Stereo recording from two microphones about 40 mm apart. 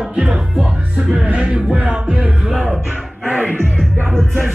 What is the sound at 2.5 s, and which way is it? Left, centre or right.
Music, centre.